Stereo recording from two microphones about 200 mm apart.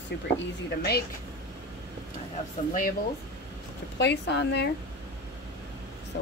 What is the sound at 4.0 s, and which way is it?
Speech, 60° left (ahead or behind).